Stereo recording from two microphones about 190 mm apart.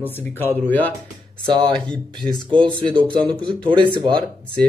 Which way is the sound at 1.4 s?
25° right (ahead or behind).